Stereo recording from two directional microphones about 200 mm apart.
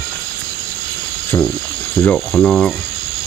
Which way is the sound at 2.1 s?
Centre (ahead or behind).